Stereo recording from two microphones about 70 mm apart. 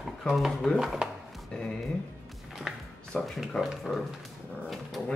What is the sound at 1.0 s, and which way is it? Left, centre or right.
Music, centre.